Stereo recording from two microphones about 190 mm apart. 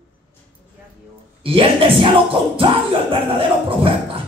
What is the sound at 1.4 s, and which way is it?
Speech, 30° right (ahead or behind).